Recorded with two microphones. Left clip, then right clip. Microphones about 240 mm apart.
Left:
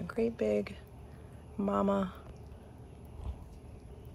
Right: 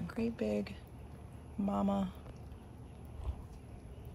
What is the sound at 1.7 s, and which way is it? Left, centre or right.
Speech, centre.